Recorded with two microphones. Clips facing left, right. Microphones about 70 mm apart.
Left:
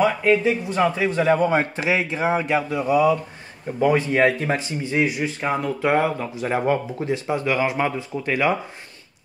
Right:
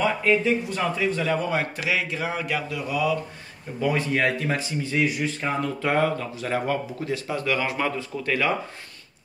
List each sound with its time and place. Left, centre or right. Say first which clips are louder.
0.0 s speech: left 4 dB; left